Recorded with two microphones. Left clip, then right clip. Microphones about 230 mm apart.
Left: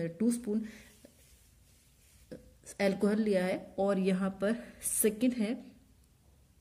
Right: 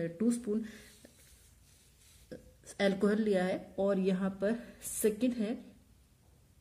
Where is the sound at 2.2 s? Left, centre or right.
Centre.